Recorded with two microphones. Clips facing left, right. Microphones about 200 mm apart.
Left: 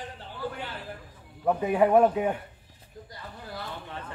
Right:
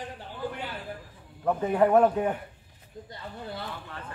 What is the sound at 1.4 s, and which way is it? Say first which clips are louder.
Speech: even; 10° left (ahead or behind).